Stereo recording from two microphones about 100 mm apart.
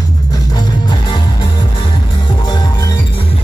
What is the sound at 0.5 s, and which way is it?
Music, 50° left (ahead or behind).